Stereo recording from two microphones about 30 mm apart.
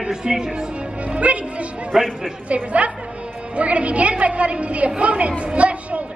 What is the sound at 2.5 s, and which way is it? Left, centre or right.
A woman's voice, right.